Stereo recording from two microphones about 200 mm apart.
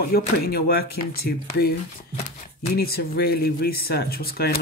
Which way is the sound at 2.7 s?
50° left (ahead or behind).